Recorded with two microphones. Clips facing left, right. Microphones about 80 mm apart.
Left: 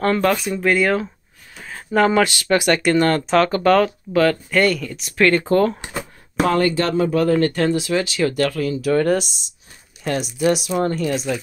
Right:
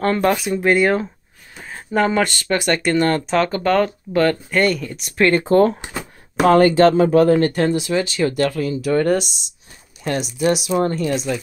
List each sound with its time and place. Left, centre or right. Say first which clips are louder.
0.0 s speech: even; centre
1.6 s a sound: even; centre
2.0 s speech: left 2 dB; centre
7.7 s speech: right 1 dB; centre
8.2 s speech: right 1 dB; centre